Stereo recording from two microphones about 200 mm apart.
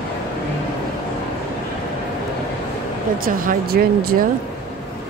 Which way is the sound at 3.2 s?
45° right (ahead or behind).